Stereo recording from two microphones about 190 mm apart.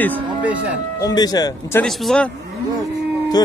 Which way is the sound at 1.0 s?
20° left (ahead or behind).